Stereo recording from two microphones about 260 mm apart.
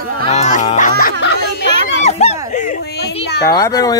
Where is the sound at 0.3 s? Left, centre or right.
Left.